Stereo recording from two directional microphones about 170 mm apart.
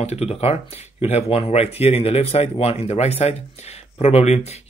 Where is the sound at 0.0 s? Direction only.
40° left (ahead or behind).